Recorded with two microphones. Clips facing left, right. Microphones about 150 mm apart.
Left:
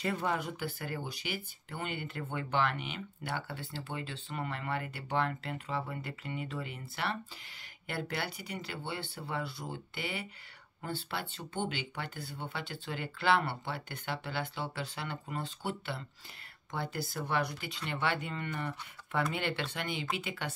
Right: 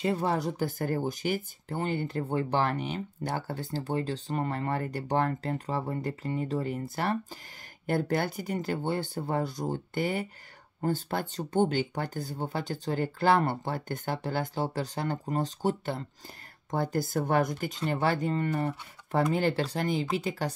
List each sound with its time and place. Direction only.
0.0 s speech: 30° right (ahead or behind)